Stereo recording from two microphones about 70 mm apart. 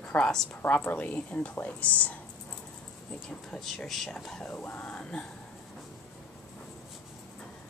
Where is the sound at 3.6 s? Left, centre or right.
Centre.